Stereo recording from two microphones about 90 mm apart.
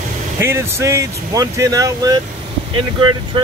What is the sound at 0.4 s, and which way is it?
Speech, 30° right (ahead or behind).